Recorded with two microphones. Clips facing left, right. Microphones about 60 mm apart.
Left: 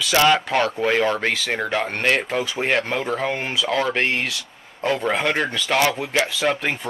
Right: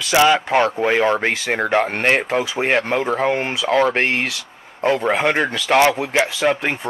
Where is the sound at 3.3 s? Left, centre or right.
Right.